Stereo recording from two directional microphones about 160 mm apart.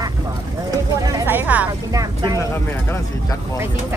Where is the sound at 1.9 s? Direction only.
20° right (ahead or behind).